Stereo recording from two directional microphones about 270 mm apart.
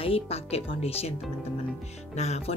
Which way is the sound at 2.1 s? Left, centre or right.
Left.